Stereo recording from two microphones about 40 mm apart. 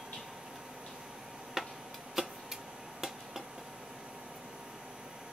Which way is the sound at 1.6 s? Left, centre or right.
Centre.